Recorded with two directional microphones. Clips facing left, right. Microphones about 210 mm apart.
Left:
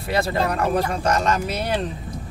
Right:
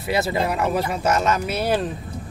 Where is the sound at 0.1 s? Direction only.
5° right (ahead or behind).